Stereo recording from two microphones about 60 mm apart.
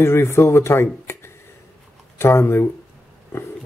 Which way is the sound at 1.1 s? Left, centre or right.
Left.